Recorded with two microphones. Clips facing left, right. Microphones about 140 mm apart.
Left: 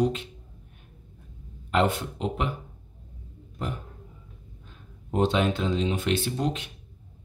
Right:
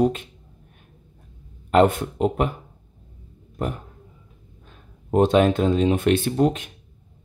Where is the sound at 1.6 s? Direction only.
50° right (ahead or behind).